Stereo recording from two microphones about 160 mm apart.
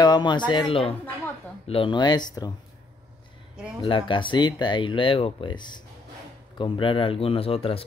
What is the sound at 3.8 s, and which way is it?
Speech, 30° left (ahead or behind).